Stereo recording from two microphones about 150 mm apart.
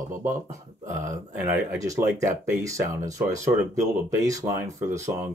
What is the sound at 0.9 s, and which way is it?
Speech, 15° right (ahead or behind).